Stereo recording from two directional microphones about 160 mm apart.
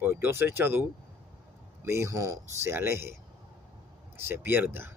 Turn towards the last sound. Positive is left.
turn(degrees=-15)  # may be behind; listen again after turning